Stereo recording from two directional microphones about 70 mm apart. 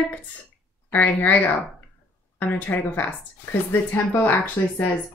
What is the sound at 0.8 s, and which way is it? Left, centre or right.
Speech, left.